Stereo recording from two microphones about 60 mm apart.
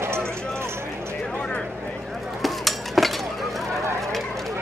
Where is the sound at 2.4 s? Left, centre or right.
Centre.